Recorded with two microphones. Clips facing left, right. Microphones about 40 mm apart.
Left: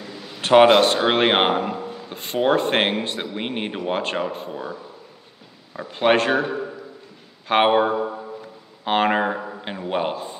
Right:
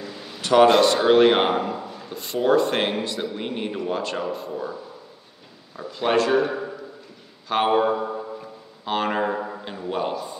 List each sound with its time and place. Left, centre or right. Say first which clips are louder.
0.4 s a sound: left 3 dB; left
1.0 s speech: right 2 dB; left
5.8 s speech: left 3 dB; left
7.4 s speech: left 3 dB; left
7.9 s a sound: left 1 dB; centre
8.8 s speech: left 4 dB; left